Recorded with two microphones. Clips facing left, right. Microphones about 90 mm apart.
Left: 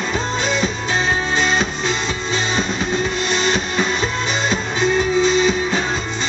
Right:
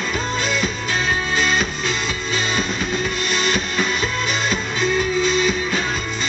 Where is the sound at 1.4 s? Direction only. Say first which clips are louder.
Left 2 dB; 25° left (ahead or behind).